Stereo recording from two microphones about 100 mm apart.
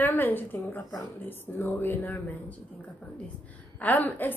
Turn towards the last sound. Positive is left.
turn(degrees=15)  # may be behind; listen again after turning